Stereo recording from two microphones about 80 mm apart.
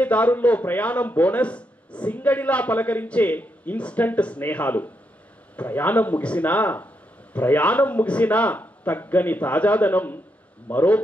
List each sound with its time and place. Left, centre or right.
0.0 s speech: centre